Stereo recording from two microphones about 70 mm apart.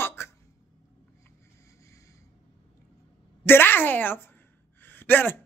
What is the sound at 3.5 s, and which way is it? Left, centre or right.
Speech, left.